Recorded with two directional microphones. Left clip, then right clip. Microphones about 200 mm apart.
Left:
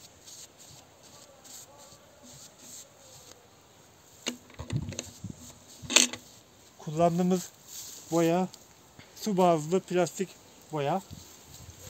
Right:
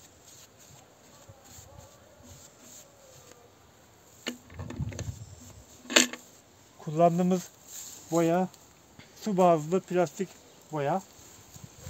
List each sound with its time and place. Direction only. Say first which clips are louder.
4.2 s rowboat: left 1 dB; centre (ahead or behind)
5.9 s a sound: even; centre (ahead or behind)
6.8 s speech: right 2 dB; 30° right (ahead or behind)
8.1 s speech: even; 15° right (ahead or behind)